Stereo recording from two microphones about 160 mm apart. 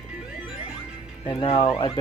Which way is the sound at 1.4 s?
30° left (ahead or behind).